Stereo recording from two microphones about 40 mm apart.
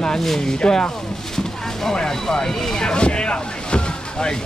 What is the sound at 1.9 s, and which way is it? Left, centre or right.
Speech, centre.